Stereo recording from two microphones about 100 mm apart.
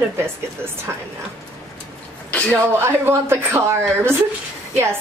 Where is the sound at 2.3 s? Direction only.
15° left (ahead or behind).